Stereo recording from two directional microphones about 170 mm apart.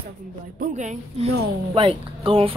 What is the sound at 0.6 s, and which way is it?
A woman's voice, 45° right (ahead or behind).